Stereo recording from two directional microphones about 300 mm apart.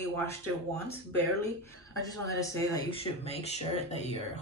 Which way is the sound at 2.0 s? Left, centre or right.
Centre.